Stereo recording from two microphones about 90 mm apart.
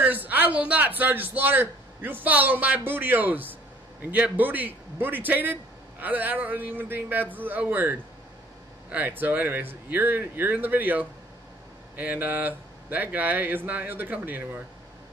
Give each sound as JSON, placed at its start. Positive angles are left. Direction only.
{"t": 0.0, "sound": "a man's voice", "side_deg": -20}